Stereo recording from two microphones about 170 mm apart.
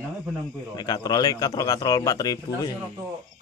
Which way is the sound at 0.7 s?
25° left (ahead or behind).